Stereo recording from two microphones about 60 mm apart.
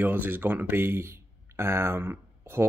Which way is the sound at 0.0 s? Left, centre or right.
Right.